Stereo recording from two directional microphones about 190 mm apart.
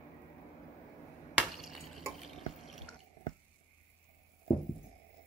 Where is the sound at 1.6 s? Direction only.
Centre (ahead or behind).